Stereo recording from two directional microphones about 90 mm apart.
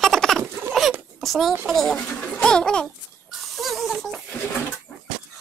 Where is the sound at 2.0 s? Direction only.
15° left (ahead or behind).